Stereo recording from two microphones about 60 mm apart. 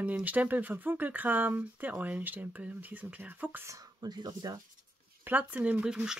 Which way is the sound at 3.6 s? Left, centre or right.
Right.